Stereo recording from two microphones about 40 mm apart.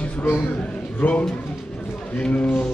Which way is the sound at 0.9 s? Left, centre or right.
Left.